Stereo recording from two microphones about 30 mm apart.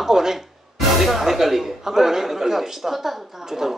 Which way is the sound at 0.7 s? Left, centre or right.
Centre.